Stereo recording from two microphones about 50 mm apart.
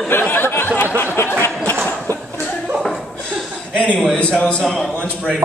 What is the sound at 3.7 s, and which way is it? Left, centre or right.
Speech, left.